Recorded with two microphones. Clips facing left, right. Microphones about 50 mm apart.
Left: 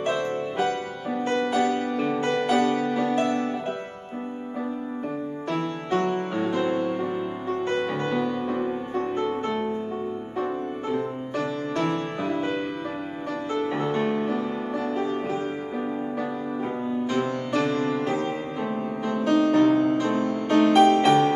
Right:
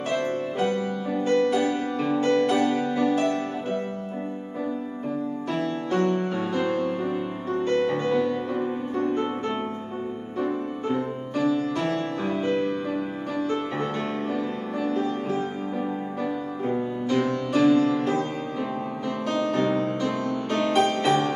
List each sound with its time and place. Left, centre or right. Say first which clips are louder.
1.1 s music: right 3 dB; centre
1.6 s music: left 1 dB; centre
2.1 s music: right 3 dB; centre
3.0 s music: right 3 dB; centre
5.9 s music: right 1 dB; centre
10.4 s music: right 2 dB; centre
13.7 s music: left 3 dB; centre
16.7 s music: right 2 dB; centre
19.8 s music: left 4 dB; left
20.4 s music: left 6 dB; centre